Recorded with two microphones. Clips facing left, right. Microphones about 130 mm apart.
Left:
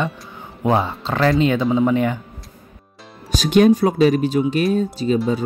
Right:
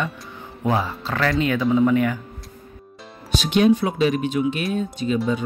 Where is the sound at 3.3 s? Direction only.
45° left (ahead or behind).